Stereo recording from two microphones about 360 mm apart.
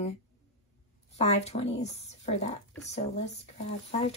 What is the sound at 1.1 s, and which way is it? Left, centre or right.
A woman's voice, centre.